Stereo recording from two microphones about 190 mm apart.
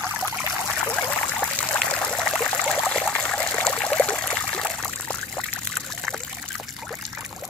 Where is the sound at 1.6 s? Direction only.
5° left (ahead or behind).